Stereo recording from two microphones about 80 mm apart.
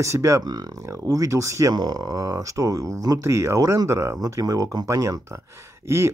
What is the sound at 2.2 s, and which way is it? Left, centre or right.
Speech, right.